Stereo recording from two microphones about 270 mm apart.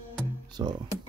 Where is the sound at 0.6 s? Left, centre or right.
Centre.